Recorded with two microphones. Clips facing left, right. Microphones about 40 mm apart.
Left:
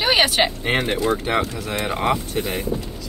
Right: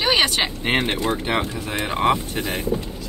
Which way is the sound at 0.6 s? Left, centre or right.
Right.